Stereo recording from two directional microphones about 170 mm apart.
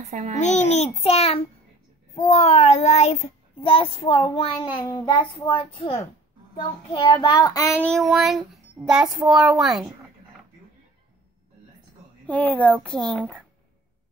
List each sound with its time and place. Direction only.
0.0 s a child's voice: 40° right (ahead or behind)
0.4 s child singing: 40° left (ahead or behind); by 7.8 s 20° left (ahead or behind)
7.8 s child singing: centre (ahead or behind)
12.3 s speech: 10° left (ahead or behind)
12.8 s child singing: 5° left (ahead or behind)